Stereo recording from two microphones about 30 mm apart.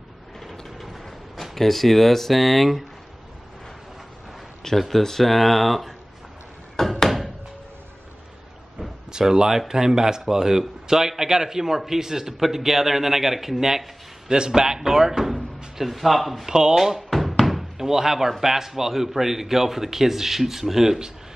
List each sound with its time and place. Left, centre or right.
0.4 s mechanisms: centre
1.4 s speech: centre
4.7 s speech: centre
6.8 s door: centre
9.1 s a man's voice: right
14.3 s speech: right
15.8 s speech: centre
16.4 s speech: right
16.7 s a sound: centre
17.7 s a man's voice: centre